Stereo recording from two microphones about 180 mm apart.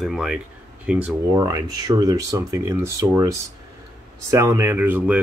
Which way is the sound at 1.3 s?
20° right (ahead or behind).